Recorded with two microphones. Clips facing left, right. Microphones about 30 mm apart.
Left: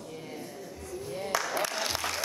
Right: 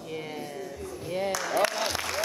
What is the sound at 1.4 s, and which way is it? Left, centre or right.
Speech, centre.